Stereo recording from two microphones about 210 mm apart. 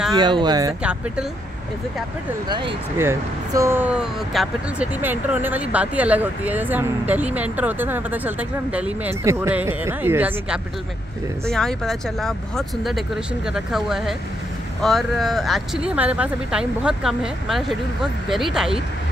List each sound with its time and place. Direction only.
0.1 s speech: 20° right (ahead or behind)
2.4 s speech: 20° right (ahead or behind)
11.4 s speech: 5° left (ahead or behind)